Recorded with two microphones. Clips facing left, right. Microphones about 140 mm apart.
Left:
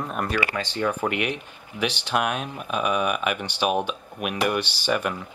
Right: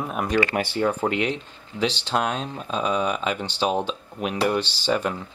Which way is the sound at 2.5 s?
20° right (ahead or behind).